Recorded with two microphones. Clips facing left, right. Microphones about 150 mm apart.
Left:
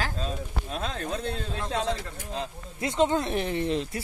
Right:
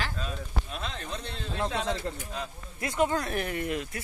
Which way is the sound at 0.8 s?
45° left (ahead or behind).